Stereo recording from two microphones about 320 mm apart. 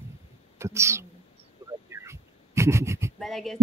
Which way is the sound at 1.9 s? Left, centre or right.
Centre.